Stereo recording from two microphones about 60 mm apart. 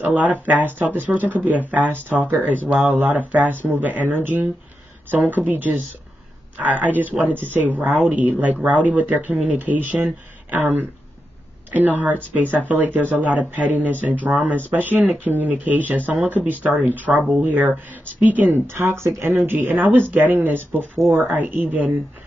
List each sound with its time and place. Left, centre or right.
0.0 s speech: right
12.4 s speech: right
18.8 s speech: right
19.4 s speech: right